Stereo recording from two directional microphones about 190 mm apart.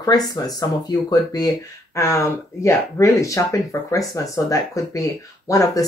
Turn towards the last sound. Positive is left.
turn(degrees=20)  # may be behind; listen again after turning